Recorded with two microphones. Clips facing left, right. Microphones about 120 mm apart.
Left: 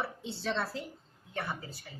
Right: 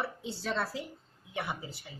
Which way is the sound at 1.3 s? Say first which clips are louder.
Right 1 dB; 15° right (ahead or behind).